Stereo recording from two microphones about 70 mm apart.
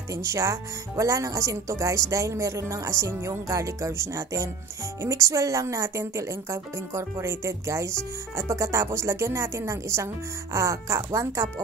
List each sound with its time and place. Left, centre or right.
0.1 s a woman's voice: right